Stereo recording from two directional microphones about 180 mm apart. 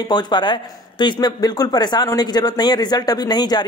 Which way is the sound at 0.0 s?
25° left (ahead or behind).